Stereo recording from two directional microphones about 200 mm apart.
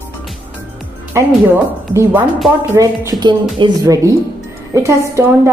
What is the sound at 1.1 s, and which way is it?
Speech, 10° right (ahead or behind).